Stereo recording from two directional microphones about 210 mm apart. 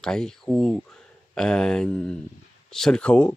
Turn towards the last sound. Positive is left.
turn(degrees=5)  # may be behind; listen again after turning